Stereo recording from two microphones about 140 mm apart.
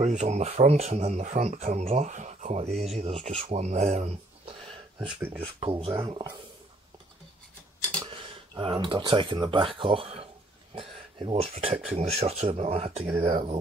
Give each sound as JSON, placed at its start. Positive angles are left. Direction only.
{"t": 0.0, "sound": "speech", "side_deg": -55}
{"t": 4.9, "sound": "speech", "side_deg": -10}
{"t": 5.6, "sound": "speech", "side_deg": -40}
{"t": 8.1, "sound": "speech", "side_deg": -40}